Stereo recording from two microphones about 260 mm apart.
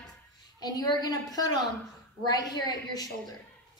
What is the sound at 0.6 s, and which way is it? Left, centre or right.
A woman's voice, centre.